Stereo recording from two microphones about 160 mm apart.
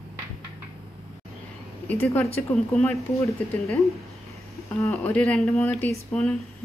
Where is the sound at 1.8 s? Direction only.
10° left (ahead or behind).